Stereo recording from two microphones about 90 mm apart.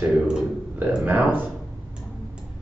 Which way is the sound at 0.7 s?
15° right (ahead or behind).